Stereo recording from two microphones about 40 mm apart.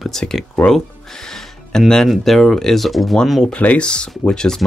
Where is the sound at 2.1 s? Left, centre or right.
Centre.